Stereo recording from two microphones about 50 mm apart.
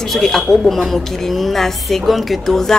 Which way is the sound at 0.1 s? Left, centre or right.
Centre.